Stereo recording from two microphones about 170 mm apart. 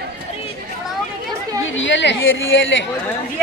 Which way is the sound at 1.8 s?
90° left.